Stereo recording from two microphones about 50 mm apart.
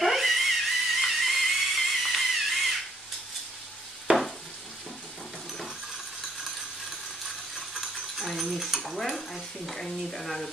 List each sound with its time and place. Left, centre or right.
0.0 s music: centre
4.1 s stir: right
7.2 s a sound: centre
10.1 s speech: centre